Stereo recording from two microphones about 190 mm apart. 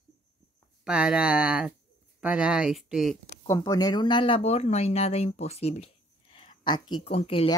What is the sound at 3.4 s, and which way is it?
Speech, 15° left (ahead or behind).